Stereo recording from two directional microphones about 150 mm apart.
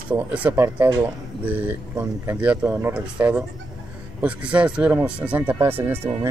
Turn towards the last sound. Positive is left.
turn(degrees=-15)  # may be behind; listen again after turning